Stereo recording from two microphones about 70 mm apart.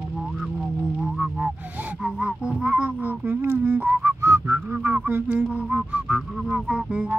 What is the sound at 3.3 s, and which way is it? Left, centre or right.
Whistling, right.